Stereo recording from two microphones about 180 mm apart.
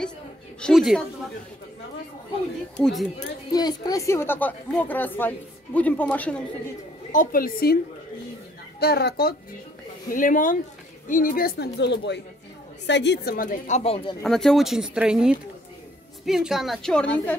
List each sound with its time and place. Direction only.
0.6 s a woman's voice: centre (ahead or behind)
2.8 s a woman's voice: centre (ahead or behind)
3.5 s a woman's voice: 20° left (ahead or behind)
7.1 s speech: 50° left (ahead or behind)
10.0 s speech: 50° left (ahead or behind); by 14.1 s 35° left (ahead or behind)
14.2 s a woman's voice: centre (ahead or behind)